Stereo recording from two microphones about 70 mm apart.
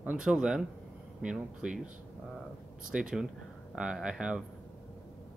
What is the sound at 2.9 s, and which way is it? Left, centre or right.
Speech, centre.